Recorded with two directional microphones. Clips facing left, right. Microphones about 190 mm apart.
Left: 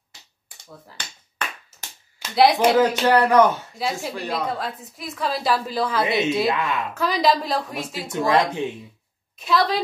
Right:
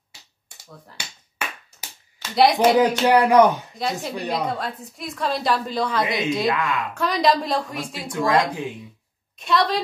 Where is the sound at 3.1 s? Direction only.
15° right (ahead or behind).